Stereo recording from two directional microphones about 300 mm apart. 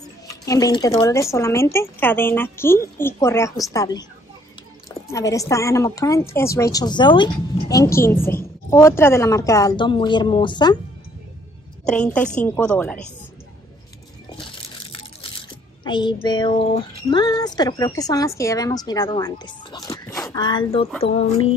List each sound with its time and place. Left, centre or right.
0.3 s a woman's voice: centre
11.8 s a woman's voice: centre
14.3 s a sound: centre
15.8 s a woman's voice: centre